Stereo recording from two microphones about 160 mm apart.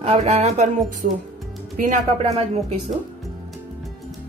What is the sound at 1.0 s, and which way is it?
Speech, 65° right (ahead or behind).